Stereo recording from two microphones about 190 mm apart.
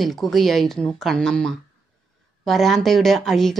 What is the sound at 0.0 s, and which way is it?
A woman's voice, centre (ahead or behind).